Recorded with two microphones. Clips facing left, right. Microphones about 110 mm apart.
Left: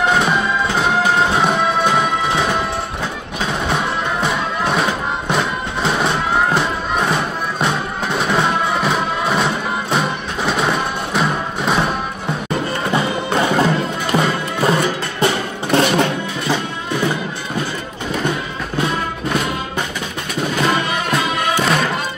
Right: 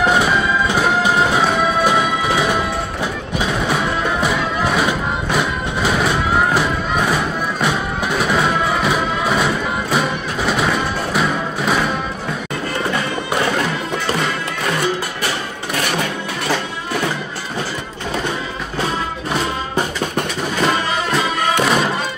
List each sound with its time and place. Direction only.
0.1 s music: 5° right (ahead or behind)
12.9 s music: 25° left (ahead or behind)
21.1 s music: centre (ahead or behind)